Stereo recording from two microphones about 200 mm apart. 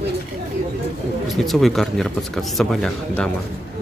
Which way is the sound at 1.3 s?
Centre (ahead or behind).